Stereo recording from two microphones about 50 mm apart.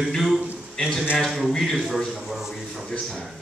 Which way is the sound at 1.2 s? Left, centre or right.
Centre.